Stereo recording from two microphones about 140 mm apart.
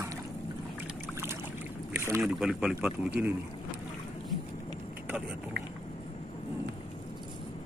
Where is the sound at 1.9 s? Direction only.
20° right (ahead or behind).